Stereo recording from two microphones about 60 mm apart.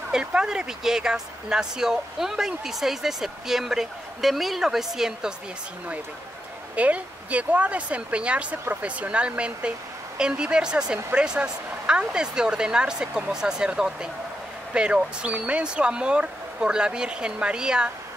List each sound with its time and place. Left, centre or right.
0.1 s speech: centre
6.7 s speech: right